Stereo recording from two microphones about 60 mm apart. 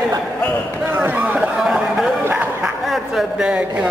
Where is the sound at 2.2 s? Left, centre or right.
Right.